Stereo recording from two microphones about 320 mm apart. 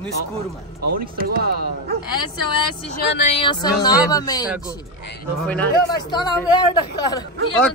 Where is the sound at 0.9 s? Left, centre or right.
Right.